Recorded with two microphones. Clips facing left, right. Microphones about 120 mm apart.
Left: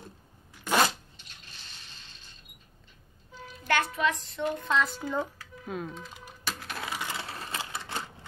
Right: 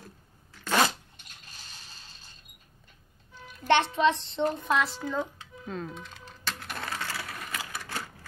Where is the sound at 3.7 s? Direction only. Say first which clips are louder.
Right 4 dB; 25° right (ahead or behind).